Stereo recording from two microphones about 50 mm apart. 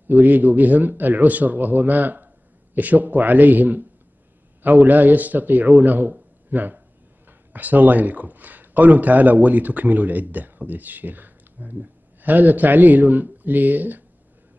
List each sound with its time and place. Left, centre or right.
0.1 s a man's voice: right